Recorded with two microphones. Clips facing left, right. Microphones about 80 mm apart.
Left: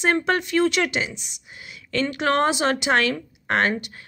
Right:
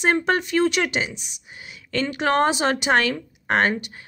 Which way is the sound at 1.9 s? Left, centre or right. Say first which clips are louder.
Even; right.